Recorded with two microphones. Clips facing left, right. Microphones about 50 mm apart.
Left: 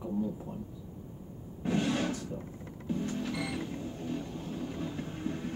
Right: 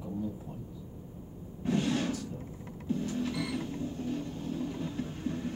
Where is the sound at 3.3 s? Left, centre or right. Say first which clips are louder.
Right 1 dB; centre.